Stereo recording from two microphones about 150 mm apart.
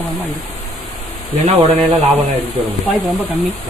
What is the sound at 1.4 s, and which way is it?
Speech, 40° right (ahead or behind).